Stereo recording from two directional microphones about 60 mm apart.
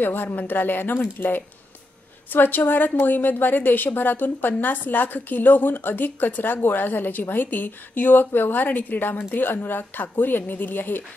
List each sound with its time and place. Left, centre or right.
0.0 s a woman's voice: left